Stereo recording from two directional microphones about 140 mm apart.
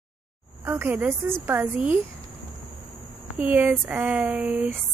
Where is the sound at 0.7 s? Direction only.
15° right (ahead or behind).